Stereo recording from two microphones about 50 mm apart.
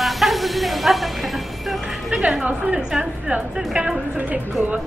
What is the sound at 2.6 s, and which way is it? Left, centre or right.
A woman's voice, centre.